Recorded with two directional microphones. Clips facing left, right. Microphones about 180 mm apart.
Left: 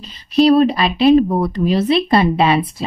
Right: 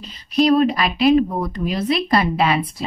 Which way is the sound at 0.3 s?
30° left (ahead or behind).